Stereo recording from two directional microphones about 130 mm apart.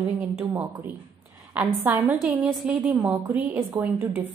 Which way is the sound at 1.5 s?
15° right (ahead or behind).